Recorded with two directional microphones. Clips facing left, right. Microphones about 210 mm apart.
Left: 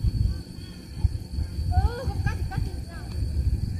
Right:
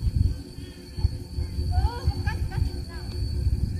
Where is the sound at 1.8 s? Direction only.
50° left (ahead or behind).